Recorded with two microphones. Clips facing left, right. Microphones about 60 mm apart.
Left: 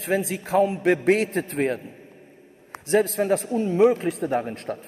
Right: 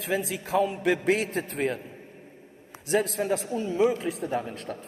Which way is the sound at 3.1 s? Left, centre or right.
Left.